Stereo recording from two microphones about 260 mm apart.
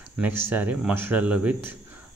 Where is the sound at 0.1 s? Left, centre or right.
Centre.